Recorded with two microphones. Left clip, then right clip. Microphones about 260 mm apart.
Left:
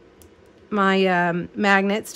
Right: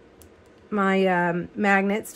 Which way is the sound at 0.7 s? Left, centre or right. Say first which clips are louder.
Left 3 dB; centre.